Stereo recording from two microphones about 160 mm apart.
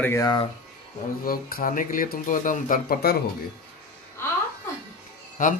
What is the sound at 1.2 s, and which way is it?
Speech, 65° left (ahead or behind).